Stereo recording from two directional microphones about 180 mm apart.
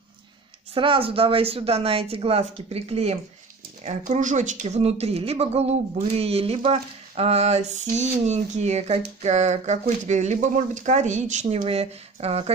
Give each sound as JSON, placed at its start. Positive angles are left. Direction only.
{"t": 0.7, "sound": "speech", "side_deg": -30}